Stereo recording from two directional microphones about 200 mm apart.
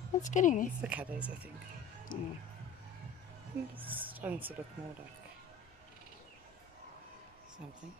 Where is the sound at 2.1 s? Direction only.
45° left (ahead or behind).